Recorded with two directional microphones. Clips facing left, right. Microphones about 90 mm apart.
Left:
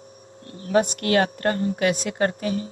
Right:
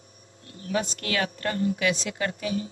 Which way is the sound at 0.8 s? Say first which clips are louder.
Left 8 dB; 60° left (ahead or behind).